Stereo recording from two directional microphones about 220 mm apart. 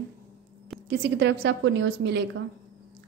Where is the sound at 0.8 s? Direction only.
50° right (ahead or behind).